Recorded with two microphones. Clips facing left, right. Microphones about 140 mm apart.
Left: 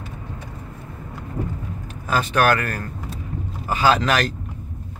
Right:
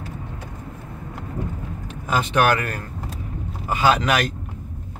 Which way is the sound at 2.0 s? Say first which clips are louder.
Even; 20° right (ahead or behind).